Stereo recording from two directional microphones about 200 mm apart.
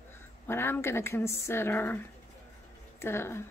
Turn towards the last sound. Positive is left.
turn(degrees=10)  # may be behind; listen again after turning